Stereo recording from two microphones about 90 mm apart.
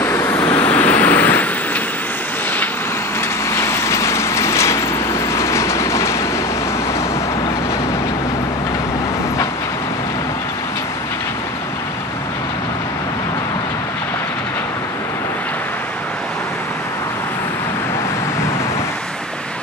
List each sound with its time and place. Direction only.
0.0 s vehicle: 25° left (ahead or behind)
0.6 s vehicle: 15° left (ahead or behind)
3.5 s vehicle: 30° left (ahead or behind)
5.3 s train: 30° left (ahead or behind)